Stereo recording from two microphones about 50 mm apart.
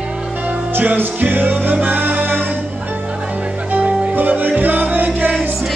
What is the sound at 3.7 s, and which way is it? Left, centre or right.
Music, right.